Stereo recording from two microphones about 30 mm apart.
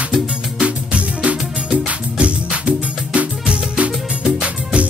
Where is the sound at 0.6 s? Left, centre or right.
Right.